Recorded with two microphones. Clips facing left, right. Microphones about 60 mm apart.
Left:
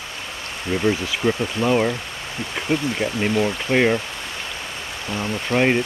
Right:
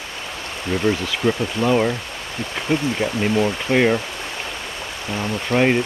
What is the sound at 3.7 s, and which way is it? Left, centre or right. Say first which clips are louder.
Speech: right 1 dB; centre.